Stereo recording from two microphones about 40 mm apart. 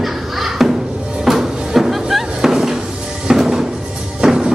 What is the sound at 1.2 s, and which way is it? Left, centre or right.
Music, centre.